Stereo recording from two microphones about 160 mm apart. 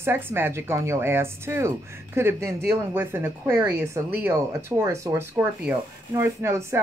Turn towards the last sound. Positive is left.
turn(degrees=-15)  # may be behind; listen again after turning